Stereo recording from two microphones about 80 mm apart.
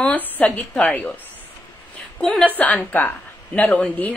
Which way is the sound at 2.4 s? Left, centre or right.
Left.